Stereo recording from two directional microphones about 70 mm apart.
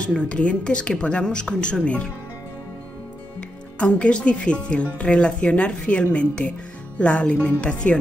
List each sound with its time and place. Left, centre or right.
0.0 s speech: centre
3.3 s speech: centre